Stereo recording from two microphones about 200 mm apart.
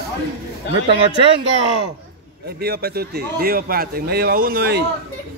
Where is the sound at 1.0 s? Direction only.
25° right (ahead or behind).